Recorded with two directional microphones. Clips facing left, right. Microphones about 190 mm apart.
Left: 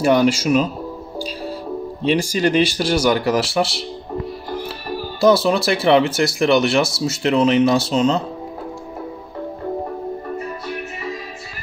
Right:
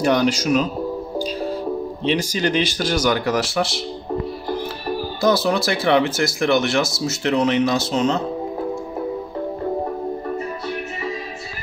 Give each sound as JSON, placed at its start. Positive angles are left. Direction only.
{"t": 0.0, "sound": "speech", "side_deg": 5}
{"t": 2.0, "sound": "speech", "side_deg": 5}
{"t": 5.2, "sound": "speech", "side_deg": 30}